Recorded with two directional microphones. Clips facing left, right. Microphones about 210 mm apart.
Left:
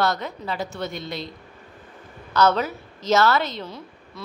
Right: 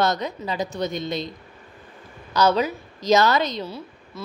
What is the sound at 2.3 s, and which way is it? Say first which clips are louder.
A woman's voice: right 1 dB; 10° right (ahead or behind).